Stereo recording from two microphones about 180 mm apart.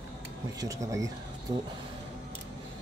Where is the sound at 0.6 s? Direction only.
20° right (ahead or behind).